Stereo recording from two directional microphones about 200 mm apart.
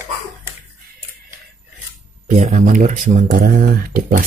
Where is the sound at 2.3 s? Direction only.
40° right (ahead or behind).